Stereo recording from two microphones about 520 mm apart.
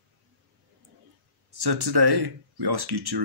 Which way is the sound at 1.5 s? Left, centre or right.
Right.